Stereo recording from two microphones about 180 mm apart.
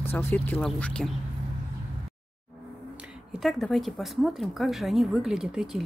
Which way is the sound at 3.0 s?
Centre (ahead or behind).